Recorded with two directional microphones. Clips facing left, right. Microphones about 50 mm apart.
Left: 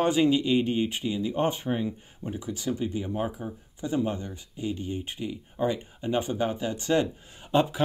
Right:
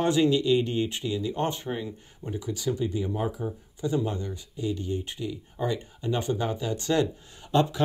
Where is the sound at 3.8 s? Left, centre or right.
Left.